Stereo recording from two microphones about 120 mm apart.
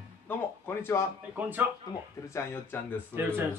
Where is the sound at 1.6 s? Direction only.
15° right (ahead or behind).